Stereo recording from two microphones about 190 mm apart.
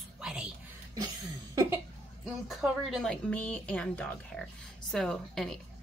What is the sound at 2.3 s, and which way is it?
A woman's voice, centre (ahead or behind).